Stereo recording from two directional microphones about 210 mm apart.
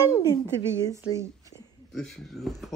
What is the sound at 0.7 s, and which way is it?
Speech, 15° right (ahead or behind).